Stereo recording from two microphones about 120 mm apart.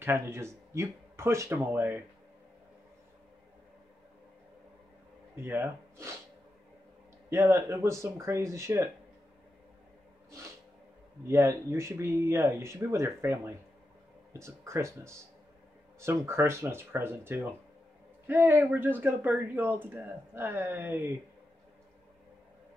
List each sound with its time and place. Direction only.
0.0 s speech: 20° right (ahead or behind)
5.4 s speech: 20° right (ahead or behind)
7.2 s speech: 20° right (ahead or behind)
11.2 s speech: 20° right (ahead or behind)